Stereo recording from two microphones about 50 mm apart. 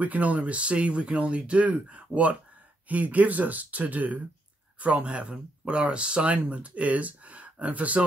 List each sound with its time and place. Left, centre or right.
0.0 s speech: right